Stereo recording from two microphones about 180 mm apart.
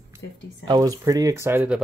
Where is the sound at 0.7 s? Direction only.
20° right (ahead or behind).